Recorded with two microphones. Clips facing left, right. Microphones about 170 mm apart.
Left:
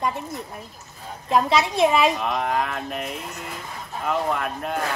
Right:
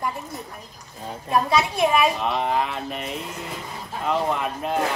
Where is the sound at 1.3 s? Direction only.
25° left (ahead or behind).